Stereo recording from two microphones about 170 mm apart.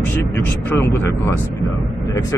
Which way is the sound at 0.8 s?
15° left (ahead or behind).